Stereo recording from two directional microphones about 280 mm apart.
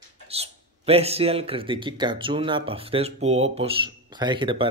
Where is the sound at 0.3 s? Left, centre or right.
Right.